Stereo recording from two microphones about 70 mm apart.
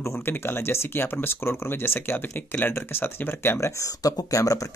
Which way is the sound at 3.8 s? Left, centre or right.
Left.